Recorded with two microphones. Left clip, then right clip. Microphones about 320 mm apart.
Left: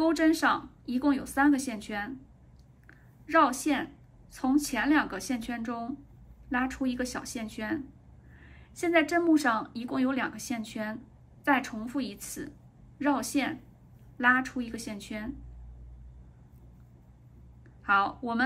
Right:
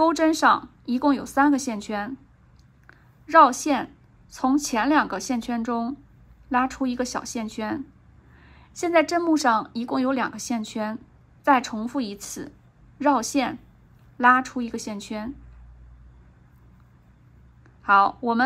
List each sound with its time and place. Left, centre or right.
0.0 s a woman's voice: centre
17.8 s a woman's voice: centre